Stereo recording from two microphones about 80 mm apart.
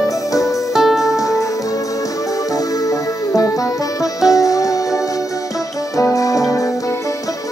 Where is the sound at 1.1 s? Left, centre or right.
Left.